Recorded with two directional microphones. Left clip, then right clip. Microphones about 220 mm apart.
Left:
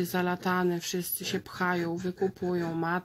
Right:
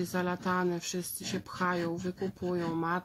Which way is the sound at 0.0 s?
35° left (ahead or behind).